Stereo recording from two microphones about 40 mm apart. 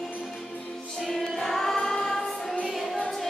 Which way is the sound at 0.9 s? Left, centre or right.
Centre.